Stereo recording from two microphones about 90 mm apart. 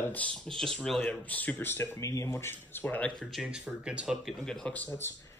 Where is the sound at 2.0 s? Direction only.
35° left (ahead or behind); by 3.1 s 20° left (ahead or behind).